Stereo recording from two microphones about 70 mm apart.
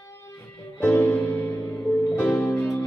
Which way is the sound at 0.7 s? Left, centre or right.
Left.